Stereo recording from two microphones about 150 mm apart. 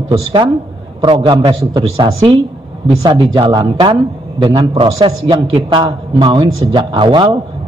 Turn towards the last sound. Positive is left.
turn(degrees=-30)  # may be behind; listen again after turning